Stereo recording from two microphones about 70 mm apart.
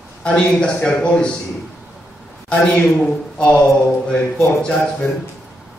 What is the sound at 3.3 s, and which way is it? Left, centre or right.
Speech, centre.